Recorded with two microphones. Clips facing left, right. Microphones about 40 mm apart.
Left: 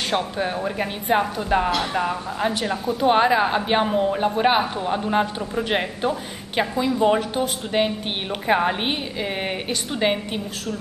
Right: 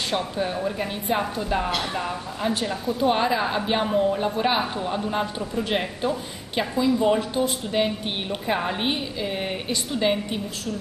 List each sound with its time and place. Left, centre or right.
0.1 s a woman's voice: left
3.0 s a man's voice: left; by 4.1 s centre
4.1 s a woman's voice: left
6.8 s a woman's voice: centre